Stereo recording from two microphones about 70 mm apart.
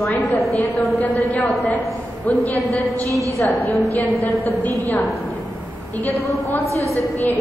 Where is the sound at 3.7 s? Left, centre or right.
Left.